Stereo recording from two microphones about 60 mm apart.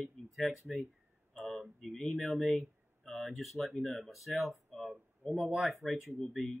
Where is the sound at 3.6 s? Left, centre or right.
Left.